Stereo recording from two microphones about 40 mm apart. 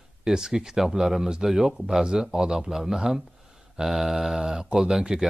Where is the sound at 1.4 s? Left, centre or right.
Centre.